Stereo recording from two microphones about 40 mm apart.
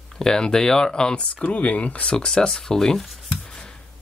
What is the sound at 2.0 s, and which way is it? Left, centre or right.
Speech, left.